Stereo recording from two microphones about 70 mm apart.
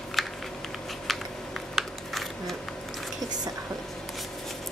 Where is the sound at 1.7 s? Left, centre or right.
Centre.